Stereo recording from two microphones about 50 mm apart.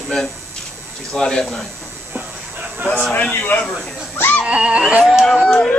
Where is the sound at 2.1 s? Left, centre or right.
Right.